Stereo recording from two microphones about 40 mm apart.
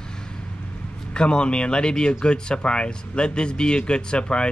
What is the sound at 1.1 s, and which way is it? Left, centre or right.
Speech, left.